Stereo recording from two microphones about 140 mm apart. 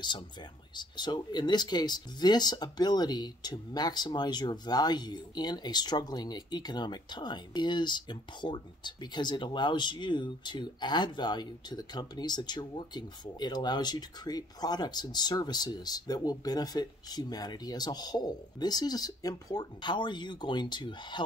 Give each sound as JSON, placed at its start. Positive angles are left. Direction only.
{"t": 0.0, "sound": "speech", "side_deg": 35}